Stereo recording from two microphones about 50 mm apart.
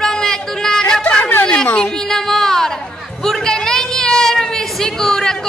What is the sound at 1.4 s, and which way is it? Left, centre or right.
Music, left.